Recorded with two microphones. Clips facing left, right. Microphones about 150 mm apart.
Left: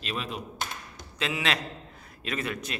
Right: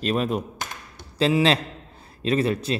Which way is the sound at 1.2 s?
30° right (ahead or behind).